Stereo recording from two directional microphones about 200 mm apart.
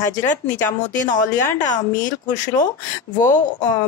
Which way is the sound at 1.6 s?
40° left (ahead or behind).